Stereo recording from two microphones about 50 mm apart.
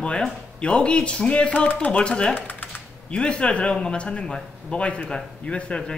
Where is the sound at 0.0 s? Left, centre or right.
Centre.